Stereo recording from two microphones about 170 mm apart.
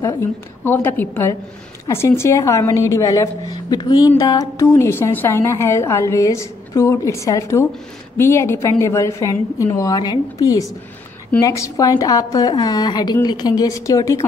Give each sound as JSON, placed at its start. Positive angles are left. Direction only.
{"t": 0.7, "sound": "a woman's voice", "side_deg": 10}